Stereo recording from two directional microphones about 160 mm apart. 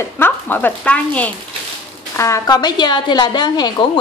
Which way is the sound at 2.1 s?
20° left (ahead or behind).